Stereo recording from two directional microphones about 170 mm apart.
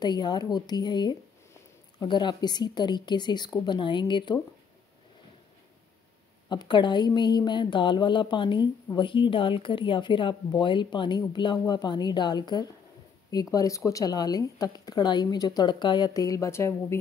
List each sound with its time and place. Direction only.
0.0 s speech: 25° left (ahead or behind)
6.5 s speech: 25° left (ahead or behind)